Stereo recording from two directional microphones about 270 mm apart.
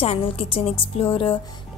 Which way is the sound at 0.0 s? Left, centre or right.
Left.